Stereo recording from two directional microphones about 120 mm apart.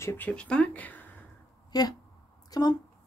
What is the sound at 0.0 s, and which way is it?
Speech, 20° left (ahead or behind).